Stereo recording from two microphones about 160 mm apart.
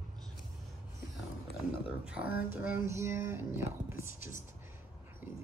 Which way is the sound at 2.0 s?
5° right (ahead or behind).